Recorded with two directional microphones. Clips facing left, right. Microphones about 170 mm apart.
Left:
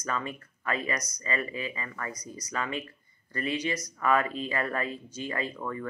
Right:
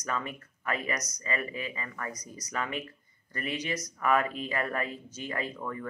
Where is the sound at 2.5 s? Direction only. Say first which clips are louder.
Left 1 dB; 15° right (ahead or behind).